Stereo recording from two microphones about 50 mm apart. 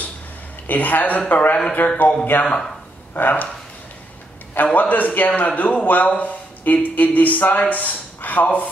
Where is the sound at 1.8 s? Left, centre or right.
Left.